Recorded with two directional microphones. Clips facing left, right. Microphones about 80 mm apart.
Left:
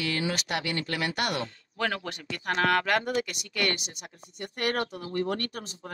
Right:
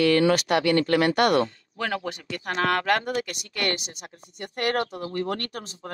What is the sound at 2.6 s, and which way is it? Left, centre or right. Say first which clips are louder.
Speech: right 2 dB; right.